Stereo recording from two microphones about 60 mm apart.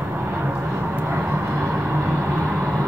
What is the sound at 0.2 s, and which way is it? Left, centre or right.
Vehicle, right.